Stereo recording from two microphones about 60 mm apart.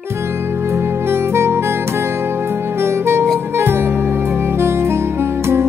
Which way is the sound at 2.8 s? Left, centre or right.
Right.